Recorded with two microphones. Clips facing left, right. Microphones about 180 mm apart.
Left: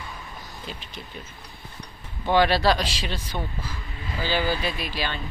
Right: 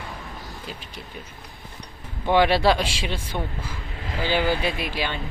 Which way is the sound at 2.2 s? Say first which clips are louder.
Right 2 dB; 20° right (ahead or behind).